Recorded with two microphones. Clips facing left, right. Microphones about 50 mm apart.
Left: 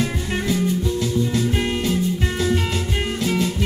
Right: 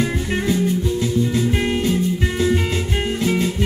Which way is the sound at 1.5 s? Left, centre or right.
Centre.